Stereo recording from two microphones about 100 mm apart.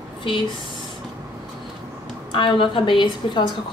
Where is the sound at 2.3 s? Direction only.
55° left (ahead or behind).